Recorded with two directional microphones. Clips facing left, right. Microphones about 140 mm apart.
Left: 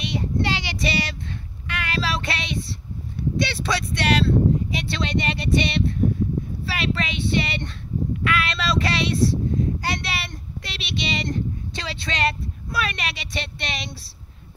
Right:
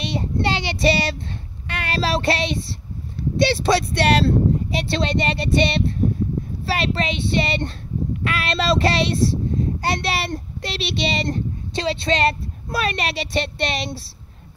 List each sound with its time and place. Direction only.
0.0 s child singing: 30° right (ahead or behind)
3.3 s speech: 30° right (ahead or behind)
8.2 s child singing: 30° right (ahead or behind)
10.6 s speech: 30° right (ahead or behind)